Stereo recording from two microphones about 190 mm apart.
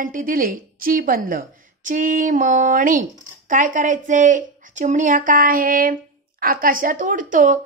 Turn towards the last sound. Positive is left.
turn(degrees=-45)  # may be behind; listen again after turning